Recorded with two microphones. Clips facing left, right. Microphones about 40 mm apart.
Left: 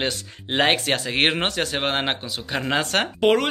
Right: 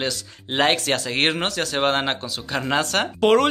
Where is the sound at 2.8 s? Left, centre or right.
Left.